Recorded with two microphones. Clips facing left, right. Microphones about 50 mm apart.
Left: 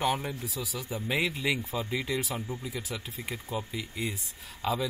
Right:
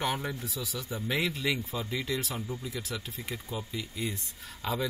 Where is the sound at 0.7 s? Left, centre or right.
Centre.